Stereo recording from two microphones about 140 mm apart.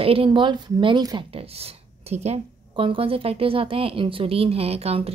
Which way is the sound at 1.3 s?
45° right (ahead or behind).